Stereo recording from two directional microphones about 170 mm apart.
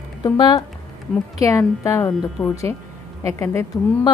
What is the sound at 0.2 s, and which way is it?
A woman's voice, 25° left (ahead or behind).